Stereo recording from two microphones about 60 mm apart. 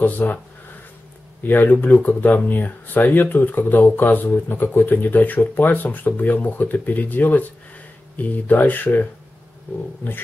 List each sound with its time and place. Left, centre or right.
0.0 s speech: left
1.5 s speech: left